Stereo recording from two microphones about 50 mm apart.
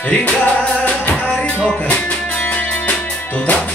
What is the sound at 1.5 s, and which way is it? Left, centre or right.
Music, left.